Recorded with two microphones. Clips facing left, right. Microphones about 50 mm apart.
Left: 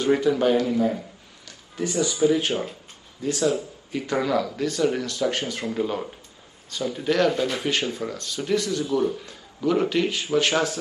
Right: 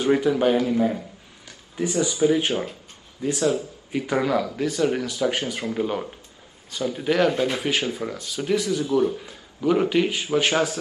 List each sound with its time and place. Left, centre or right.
0.0 s a man's voice: centre